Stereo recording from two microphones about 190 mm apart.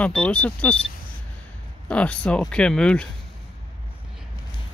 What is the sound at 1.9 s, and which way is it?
Speech, 5° left (ahead or behind).